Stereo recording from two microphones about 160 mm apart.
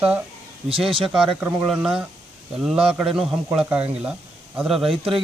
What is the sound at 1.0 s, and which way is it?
Speech, 5° right (ahead or behind).